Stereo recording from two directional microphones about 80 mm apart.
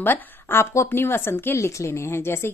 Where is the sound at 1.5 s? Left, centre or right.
Left.